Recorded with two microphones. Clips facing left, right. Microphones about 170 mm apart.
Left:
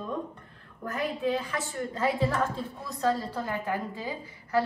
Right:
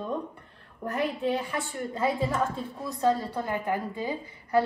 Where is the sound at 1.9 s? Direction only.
15° right (ahead or behind).